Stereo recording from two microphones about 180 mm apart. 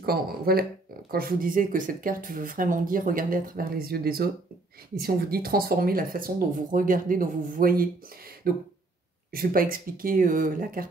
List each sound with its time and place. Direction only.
0.0 s speech: 55° right (ahead or behind)